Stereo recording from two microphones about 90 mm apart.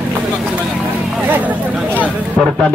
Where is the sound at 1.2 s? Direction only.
20° right (ahead or behind).